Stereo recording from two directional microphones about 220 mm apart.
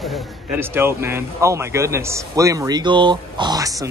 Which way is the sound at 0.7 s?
10° right (ahead or behind).